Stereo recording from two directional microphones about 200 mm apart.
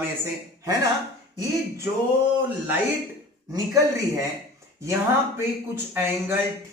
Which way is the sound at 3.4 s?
15° right (ahead or behind).